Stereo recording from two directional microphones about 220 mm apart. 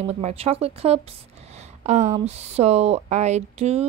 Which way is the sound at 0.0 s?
30° right (ahead or behind).